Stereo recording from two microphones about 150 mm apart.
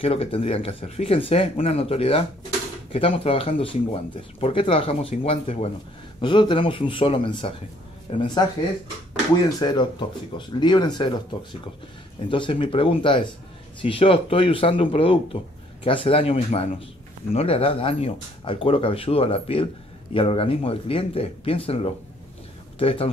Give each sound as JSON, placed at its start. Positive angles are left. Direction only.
{"t": 0.0, "sound": "speech", "side_deg": 40}
{"t": 9.6, "sound": "speech", "side_deg": 30}
{"t": 12.3, "sound": "speech", "side_deg": 35}